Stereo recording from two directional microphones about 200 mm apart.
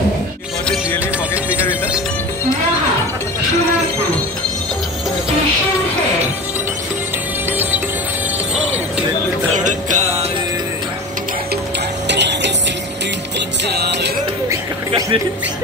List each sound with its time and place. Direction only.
1.3 s music: 5° right (ahead or behind)
9.6 s music: 40° right (ahead or behind)
12.1 s music: 60° right (ahead or behind)
13.7 s music: 55° right (ahead or behind)
14.9 s music: 25° right (ahead or behind)